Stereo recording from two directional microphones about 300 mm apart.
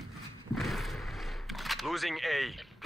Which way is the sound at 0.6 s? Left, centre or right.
Centre.